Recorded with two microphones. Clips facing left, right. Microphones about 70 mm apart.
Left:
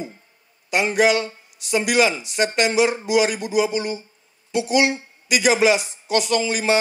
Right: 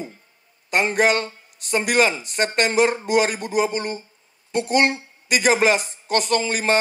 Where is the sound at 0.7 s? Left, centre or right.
Right.